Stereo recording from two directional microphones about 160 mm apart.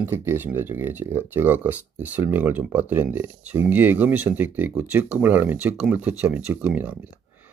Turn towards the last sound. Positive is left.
turn(degrees=-10)  # may be behind; listen again after turning